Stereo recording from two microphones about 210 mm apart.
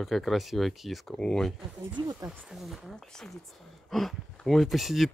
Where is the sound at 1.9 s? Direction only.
15° right (ahead or behind).